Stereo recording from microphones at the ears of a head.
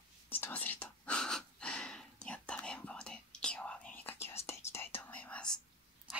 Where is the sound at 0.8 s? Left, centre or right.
Centre.